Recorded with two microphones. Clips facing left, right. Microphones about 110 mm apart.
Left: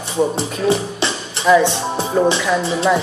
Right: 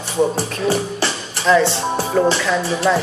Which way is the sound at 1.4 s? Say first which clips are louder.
Left 2 dB; 10° left (ahead or behind).